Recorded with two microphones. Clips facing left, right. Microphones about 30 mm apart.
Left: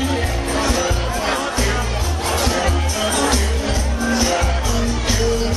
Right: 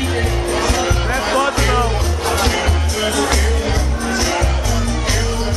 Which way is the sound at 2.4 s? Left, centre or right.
Right.